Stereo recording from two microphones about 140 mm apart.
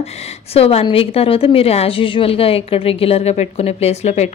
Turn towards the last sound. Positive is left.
turn(degrees=50)  # may be behind; listen again after turning